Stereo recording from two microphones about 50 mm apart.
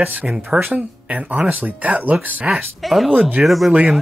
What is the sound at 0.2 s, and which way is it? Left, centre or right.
Speech, centre.